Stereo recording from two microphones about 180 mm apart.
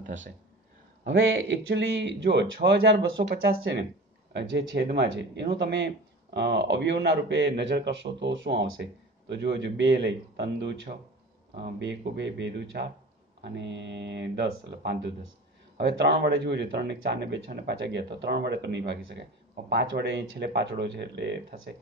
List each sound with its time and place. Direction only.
1.0 s speech: 90° right
4.3 s speech: 75° right (ahead or behind)